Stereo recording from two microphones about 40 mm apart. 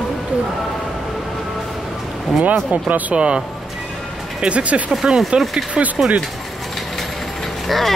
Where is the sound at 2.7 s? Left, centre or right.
Right.